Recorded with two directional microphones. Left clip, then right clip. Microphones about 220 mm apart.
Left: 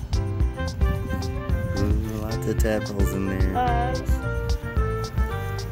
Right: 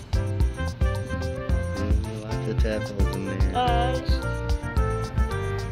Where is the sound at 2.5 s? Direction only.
30° left (ahead or behind).